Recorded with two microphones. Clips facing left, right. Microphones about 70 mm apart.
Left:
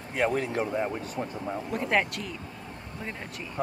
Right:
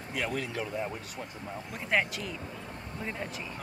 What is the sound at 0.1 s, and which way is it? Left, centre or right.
Speech, left.